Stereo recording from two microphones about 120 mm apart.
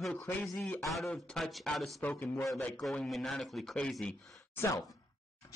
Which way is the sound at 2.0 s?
15° left (ahead or behind).